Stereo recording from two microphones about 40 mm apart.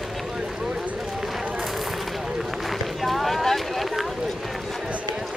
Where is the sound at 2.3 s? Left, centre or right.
Centre.